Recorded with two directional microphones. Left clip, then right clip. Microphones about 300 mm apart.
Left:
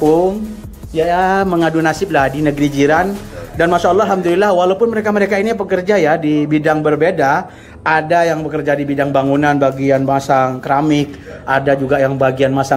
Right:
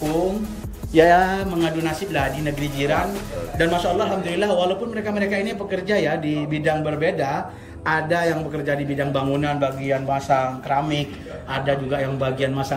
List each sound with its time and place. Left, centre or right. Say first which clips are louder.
0.9 s music: left 1 dB; centre
1.6 s a man's voice: left 9 dB; centre